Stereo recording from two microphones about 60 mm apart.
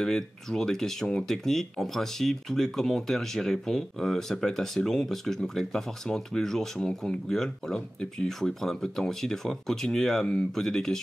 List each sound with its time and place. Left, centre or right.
0.0 s speech: centre